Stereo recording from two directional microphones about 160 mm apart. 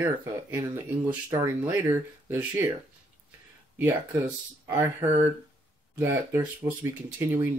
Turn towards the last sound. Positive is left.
turn(degrees=-15)  # may be behind; listen again after turning